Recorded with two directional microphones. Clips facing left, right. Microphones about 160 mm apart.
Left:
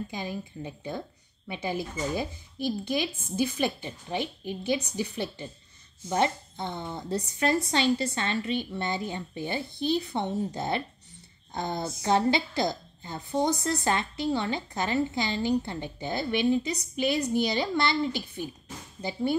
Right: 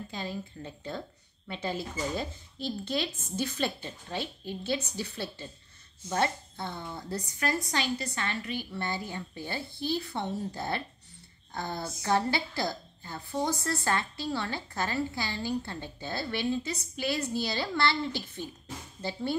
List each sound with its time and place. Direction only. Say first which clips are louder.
0.1 s a woman's voice: left 2 dB; 15° left (ahead or behind)